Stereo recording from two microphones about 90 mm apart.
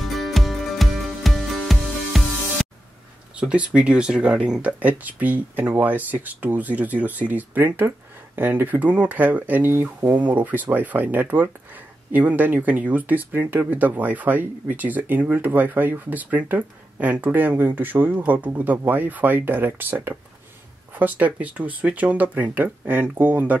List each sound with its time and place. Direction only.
0.0 s music: centre (ahead or behind)
3.3 s speech: 15° right (ahead or behind)